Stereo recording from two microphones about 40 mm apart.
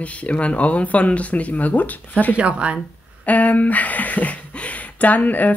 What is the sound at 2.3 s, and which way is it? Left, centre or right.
Speech, right.